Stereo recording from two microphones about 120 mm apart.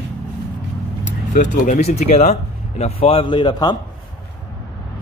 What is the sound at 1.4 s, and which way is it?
Speech, 90° left.